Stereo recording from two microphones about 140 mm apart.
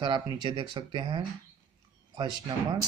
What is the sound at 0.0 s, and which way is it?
Speech, 35° right (ahead or behind).